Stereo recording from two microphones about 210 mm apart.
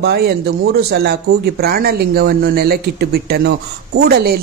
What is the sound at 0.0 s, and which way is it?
Speech, 50° right (ahead or behind).